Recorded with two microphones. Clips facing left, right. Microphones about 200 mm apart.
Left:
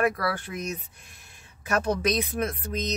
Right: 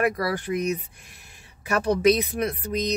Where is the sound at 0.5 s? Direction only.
10° right (ahead or behind).